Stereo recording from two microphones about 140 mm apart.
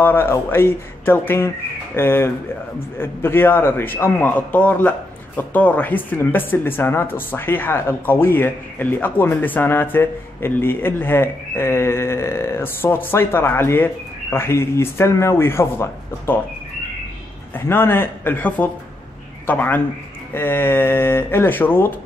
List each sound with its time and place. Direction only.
0.0 s a man's voice: 15° left (ahead or behind)
17.6 s a man's voice: 15° left (ahead or behind)